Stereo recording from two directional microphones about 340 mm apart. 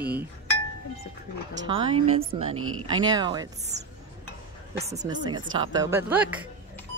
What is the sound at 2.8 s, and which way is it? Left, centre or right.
Speech, centre.